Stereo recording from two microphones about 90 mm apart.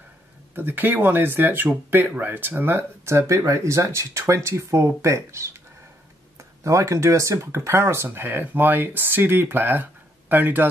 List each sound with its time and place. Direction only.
0.6 s speech: 20° right (ahead or behind)
6.6 s speech: 35° right (ahead or behind)